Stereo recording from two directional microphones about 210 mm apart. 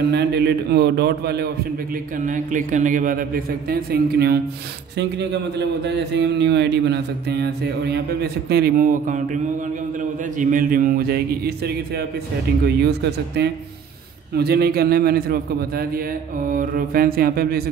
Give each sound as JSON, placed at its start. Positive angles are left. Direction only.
{"t": 0.1, "sound": "a man's voice", "side_deg": -50}
{"t": 2.1, "sound": "a man's voice", "side_deg": -40}